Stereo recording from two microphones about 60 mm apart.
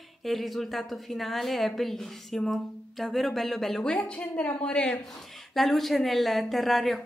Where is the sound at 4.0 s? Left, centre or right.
Left; by 7.0 s centre.